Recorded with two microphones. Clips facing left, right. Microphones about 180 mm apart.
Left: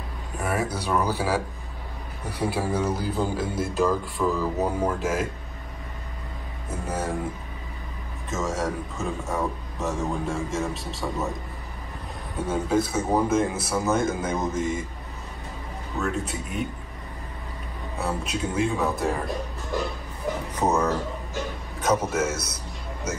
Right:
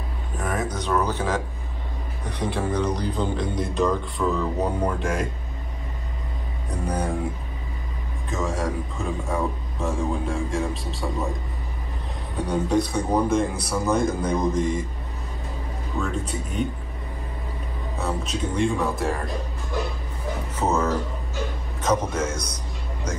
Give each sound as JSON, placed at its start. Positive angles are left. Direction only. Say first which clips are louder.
{"t": 0.4, "sound": "a man's voice", "louder": "even", "side_deg": 10}
{"t": 6.7, "sound": "a man's voice", "louder": "right 2 dB", "side_deg": 5}
{"t": 8.3, "sound": "a man's voice", "louder": "right 1 dB", "side_deg": 0}
{"t": 12.4, "sound": "a man's voice", "louder": "right 1 dB", "side_deg": 0}
{"t": 16.0, "sound": "a man's voice", "louder": "even", "side_deg": 5}
{"t": 18.0, "sound": "a man's voice", "louder": "right 1 dB", "side_deg": 10}
{"t": 20.5, "sound": "a sound", "louder": "even", "side_deg": 15}
{"t": 21.8, "sound": "speech", "louder": "even", "side_deg": 10}